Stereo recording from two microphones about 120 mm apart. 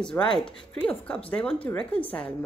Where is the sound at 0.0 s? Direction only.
5° left (ahead or behind).